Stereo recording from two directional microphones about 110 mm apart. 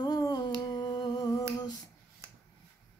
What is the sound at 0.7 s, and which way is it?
Humming, 40° left (ahead or behind).